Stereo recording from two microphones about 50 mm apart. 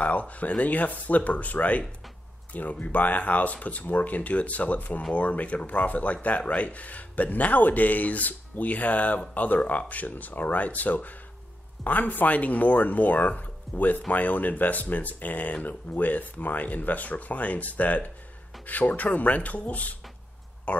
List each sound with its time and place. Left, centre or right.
0.0 s speech: left